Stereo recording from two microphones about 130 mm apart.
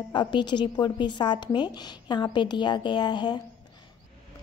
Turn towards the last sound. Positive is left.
turn(degrees=35)  # may be behind; listen again after turning